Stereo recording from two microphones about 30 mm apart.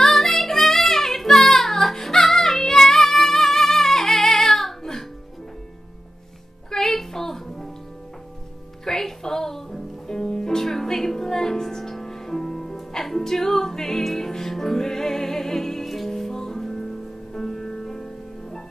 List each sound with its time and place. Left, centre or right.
0.0 s music: centre
6.9 s music: centre
8.8 s music: centre
16.1 s music: centre